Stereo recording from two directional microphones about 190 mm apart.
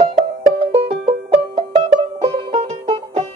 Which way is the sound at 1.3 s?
30° right (ahead or behind).